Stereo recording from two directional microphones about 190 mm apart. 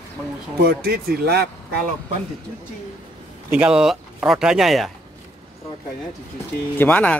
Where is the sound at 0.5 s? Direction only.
55° right (ahead or behind).